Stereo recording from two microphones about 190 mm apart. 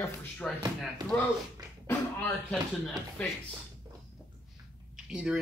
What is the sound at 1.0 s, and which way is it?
Speech, 20° right (ahead or behind).